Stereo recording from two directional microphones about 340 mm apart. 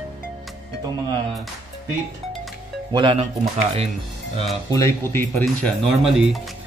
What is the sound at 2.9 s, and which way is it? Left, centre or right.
Speech, centre.